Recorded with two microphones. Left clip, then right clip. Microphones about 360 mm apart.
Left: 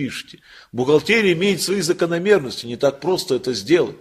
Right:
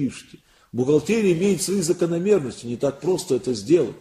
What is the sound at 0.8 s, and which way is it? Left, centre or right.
A man's voice, left.